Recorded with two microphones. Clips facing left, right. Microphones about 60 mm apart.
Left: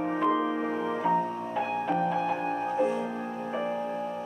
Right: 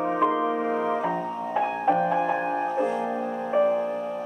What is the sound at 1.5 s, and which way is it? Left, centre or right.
Music, right.